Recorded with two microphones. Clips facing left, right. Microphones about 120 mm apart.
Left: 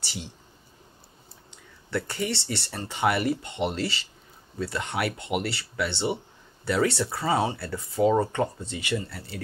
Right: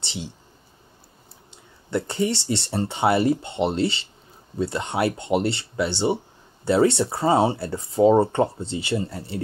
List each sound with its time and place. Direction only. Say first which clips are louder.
1.9 s speech: right 5 dB; 25° right (ahead or behind)